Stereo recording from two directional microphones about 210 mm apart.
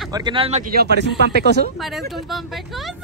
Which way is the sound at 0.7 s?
50° right (ahead or behind).